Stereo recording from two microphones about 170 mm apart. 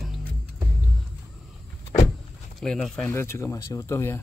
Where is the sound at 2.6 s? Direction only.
5° left (ahead or behind).